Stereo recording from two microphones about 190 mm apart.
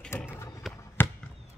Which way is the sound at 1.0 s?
10° left (ahead or behind).